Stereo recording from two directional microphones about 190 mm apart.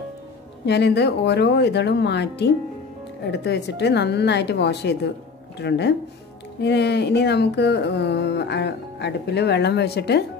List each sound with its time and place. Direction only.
0.7 s speech: 65° left (ahead or behind)